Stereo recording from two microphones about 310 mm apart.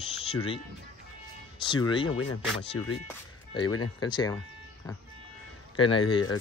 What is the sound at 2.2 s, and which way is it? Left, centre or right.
Speech, left.